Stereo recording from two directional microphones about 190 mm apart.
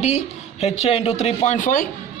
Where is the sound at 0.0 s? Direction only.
35° left (ahead or behind).